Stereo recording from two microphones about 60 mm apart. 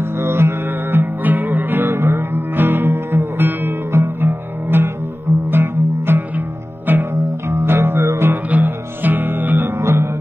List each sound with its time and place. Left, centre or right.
0.0 s music: right
3.9 s music: right
8.5 s music: right
9.8 s music: right